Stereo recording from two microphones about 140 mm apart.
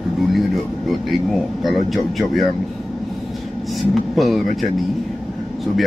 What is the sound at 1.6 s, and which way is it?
Speech, centre (ahead or behind).